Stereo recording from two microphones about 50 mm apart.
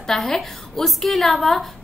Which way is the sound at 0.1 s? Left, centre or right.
Centre.